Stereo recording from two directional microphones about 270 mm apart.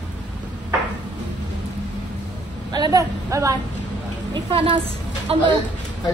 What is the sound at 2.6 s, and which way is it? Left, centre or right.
A woman's voice, centre.